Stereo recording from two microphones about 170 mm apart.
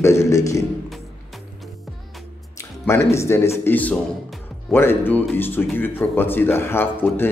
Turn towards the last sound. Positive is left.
turn(degrees=15)  # may be behind; listen again after turning